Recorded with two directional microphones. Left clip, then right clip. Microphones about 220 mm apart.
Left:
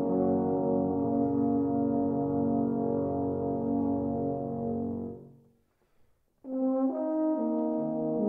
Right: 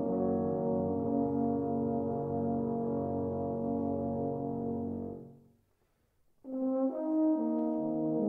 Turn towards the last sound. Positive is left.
turn(degrees=40)  # may be behind; listen again after turning